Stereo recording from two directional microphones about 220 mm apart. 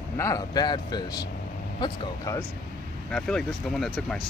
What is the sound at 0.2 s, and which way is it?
Speech, 15° left (ahead or behind).